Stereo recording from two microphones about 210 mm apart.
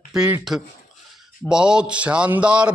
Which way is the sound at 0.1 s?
5° right (ahead or behind).